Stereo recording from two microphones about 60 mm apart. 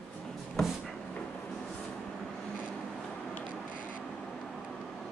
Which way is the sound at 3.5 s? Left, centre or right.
Centre.